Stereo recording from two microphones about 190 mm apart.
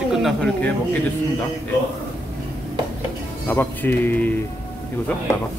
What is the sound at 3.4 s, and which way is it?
Speech, 10° left (ahead or behind).